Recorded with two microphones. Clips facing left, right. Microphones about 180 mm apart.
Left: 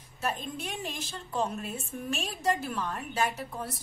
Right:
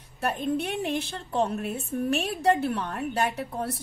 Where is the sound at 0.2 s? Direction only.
60° right (ahead or behind).